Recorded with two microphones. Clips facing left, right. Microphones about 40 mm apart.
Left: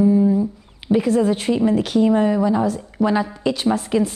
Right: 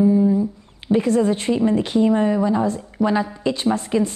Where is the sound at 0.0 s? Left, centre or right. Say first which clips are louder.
Left 1 dB; centre.